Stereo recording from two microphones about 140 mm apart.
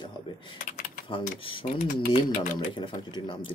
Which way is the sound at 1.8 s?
80° left.